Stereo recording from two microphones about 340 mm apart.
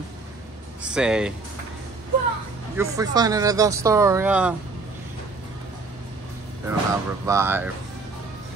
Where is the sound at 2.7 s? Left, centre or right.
Centre.